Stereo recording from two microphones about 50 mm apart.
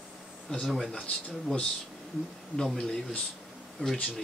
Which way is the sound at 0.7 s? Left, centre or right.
Centre.